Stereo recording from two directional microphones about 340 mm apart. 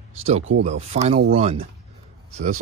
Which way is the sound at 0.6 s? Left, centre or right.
Centre.